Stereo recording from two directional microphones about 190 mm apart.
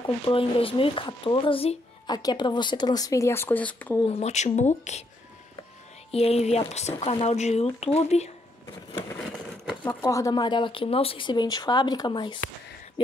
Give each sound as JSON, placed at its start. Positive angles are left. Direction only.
{"t": 0.0, "sound": "speech", "side_deg": 25}
{"t": 4.0, "sound": "speech", "side_deg": 35}
{"t": 6.1, "sound": "speech", "side_deg": 35}
{"t": 9.8, "sound": "speech", "side_deg": 15}